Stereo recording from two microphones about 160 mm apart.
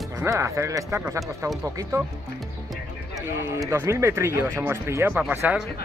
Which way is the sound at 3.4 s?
20° right (ahead or behind).